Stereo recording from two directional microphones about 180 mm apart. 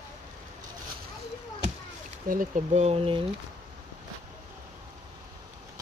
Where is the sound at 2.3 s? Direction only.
45° right (ahead or behind).